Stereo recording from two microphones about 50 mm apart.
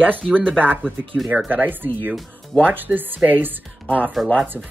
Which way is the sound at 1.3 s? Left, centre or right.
Right.